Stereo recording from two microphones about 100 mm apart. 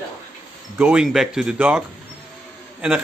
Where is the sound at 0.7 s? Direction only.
10° right (ahead or behind).